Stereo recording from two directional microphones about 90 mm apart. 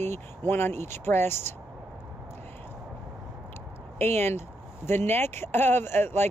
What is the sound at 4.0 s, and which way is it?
Speech, 25° left (ahead or behind).